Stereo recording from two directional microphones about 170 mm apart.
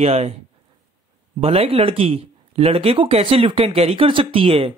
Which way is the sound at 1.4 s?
35° right (ahead or behind).